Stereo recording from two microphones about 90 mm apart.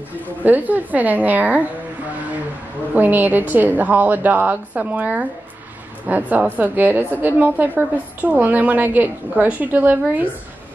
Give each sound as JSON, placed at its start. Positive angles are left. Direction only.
{"t": 0.4, "sound": "a woman's voice", "side_deg": -20}
{"t": 2.9, "sound": "a woman's voice", "side_deg": -20}